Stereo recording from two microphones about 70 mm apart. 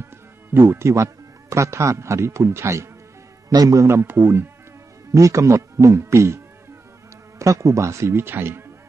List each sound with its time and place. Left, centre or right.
0.5 s a man's voice: right
3.4 s speech: right
5.1 s speech: right